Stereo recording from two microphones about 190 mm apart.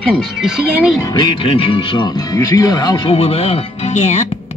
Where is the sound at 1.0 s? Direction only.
25° left (ahead or behind).